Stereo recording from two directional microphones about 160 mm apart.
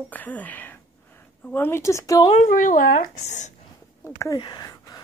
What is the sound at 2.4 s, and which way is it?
Speech, 55° left (ahead or behind).